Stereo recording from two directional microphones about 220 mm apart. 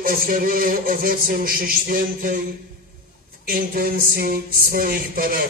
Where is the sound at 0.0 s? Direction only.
40° right (ahead or behind).